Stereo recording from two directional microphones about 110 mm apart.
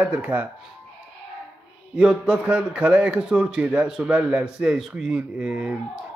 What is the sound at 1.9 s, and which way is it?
A man's voice, 10° right (ahead or behind).